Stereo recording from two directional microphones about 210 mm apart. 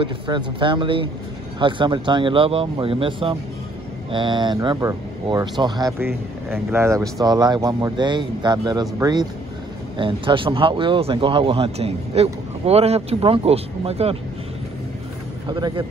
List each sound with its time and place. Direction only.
0.0 s speech: 25° right (ahead or behind)
15.4 s speech: 20° right (ahead or behind)